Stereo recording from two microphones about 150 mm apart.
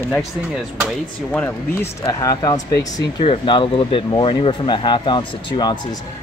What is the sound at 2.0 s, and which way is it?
Speech, 25° left (ahead or behind).